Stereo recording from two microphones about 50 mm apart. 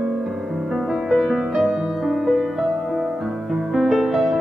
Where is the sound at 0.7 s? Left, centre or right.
Centre.